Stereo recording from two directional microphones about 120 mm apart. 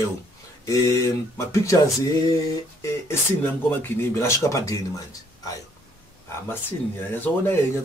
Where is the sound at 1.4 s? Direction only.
25° left (ahead or behind).